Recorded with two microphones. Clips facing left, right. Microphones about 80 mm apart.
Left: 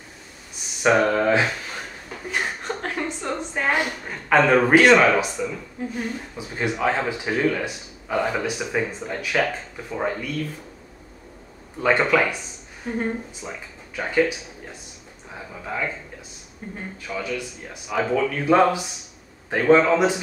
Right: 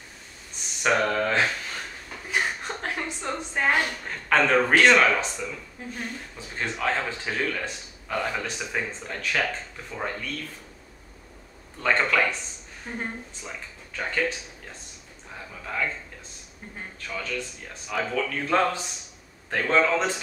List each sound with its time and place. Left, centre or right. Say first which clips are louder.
0.8 s speech: left 5 dB; centre
2.3 s a sound: left 1 dB; centre
3.7 s speech: left 2 dB; centre
11.8 s speech: left 4 dB; centre
12.9 s speech: left 8 dB; centre
15.3 s speech: left 2 dB; centre
17.0 s speech: left 3 dB; centre